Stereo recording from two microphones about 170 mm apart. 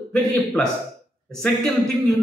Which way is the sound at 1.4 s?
5° left (ahead or behind).